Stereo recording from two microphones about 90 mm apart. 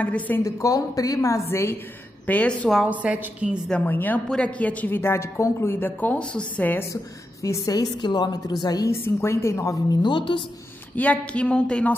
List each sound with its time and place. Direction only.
0.0 s speech: 15° left (ahead or behind)
0.4 s a woman's voice: 40° left (ahead or behind)
2.2 s speech: 15° left (ahead or behind)
2.9 s a woman's voice: 15° right (ahead or behind)
3.8 s a woman's voice: 20° left (ahead or behind)
7.4 s a woman's voice: 40° left (ahead or behind)
8.9 s speech: 30° left (ahead or behind)
10.0 s a woman's voice: 65° left (ahead or behind)
11.0 s speech: 15° left (ahead or behind)